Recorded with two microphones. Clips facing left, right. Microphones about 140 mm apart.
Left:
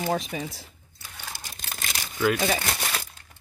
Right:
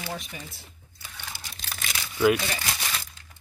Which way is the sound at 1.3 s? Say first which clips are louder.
Left 1 dB; 45° left (ahead or behind).